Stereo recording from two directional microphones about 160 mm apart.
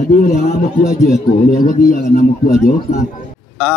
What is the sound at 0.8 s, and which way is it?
A man's voice, 55° left (ahead or behind).